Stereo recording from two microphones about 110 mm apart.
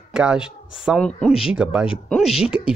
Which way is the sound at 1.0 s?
10° left (ahead or behind).